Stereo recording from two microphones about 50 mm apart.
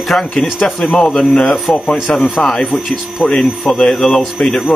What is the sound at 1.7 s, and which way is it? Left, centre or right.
Speech, centre.